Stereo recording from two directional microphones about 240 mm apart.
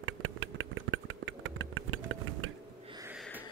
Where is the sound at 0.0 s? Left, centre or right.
Right.